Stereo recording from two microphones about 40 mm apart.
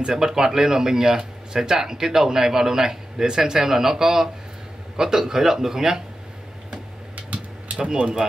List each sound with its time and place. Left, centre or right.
0.0 s speech: centre
7.7 s speech: centre